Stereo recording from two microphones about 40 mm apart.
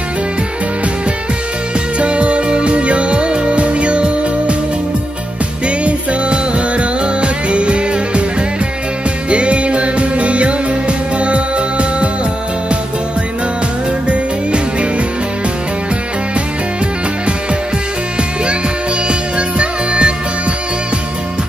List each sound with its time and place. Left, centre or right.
2.0 s music: right
5.7 s music: right
9.3 s music: right
14.0 s music: right
19.0 s music: right